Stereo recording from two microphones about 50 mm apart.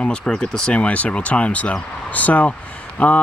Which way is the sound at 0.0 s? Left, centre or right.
Centre.